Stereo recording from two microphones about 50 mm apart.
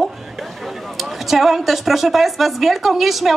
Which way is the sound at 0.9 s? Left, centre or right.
Centre.